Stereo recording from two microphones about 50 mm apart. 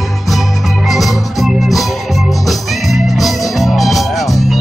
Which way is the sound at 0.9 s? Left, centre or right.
Centre.